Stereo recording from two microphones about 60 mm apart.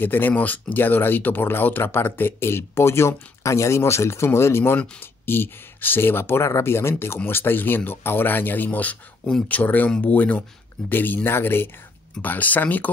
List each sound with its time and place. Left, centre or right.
0.0 s speech: left